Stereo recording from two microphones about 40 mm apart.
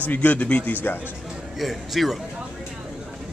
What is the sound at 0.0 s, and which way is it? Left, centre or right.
Speech, left.